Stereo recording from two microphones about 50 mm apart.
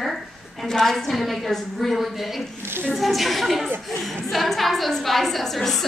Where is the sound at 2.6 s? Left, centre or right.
Right.